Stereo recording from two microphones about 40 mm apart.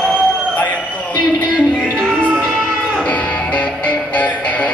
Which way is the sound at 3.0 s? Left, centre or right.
Left.